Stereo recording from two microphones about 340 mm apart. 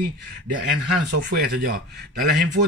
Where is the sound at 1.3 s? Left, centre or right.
Right.